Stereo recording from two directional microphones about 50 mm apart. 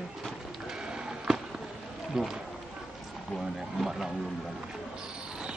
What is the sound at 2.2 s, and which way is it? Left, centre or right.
Speech, centre.